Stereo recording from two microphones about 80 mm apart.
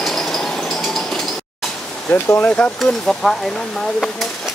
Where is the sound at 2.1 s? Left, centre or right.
Left.